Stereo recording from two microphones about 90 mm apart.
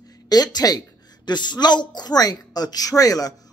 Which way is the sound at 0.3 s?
50° left (ahead or behind).